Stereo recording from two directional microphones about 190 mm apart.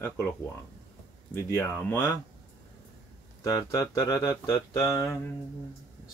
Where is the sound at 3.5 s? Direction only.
20° left (ahead or behind).